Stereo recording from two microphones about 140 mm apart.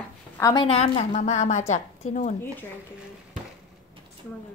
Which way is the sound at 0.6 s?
45° left (ahead or behind).